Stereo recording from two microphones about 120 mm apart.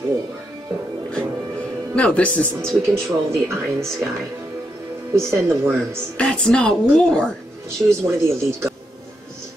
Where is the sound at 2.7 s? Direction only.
25° right (ahead or behind).